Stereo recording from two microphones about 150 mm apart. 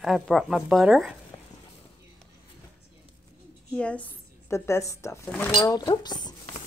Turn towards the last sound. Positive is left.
turn(degrees=30)  # may be behind; listen again after turning